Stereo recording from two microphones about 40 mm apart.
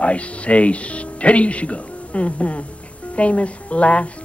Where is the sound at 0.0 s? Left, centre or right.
Left.